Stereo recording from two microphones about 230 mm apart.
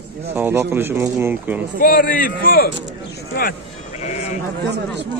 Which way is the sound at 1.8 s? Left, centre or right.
Left.